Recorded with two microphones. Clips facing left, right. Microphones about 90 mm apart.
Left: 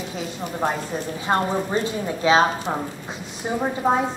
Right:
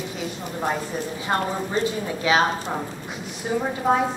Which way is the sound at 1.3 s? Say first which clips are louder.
Left 3 dB; 25° left (ahead or behind).